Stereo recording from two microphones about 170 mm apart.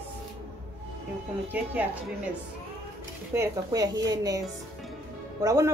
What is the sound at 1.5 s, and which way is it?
Speech, 10° right (ahead or behind).